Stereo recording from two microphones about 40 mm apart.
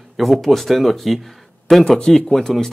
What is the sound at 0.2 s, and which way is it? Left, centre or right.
Speech, centre.